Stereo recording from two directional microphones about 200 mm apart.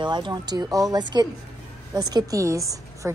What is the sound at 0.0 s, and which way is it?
Speech, 20° right (ahead or behind).